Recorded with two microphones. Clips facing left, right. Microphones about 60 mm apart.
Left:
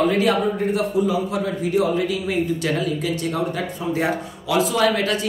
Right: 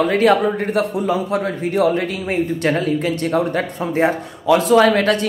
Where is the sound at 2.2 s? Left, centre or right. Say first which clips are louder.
Right 3 dB; right.